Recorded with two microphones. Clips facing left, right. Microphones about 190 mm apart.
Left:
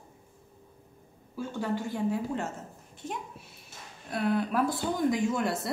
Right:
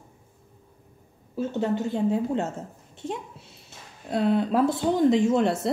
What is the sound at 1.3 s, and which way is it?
A woman's voice, 20° right (ahead or behind).